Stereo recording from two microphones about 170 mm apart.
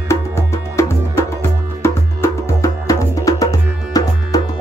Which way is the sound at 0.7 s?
15° left (ahead or behind).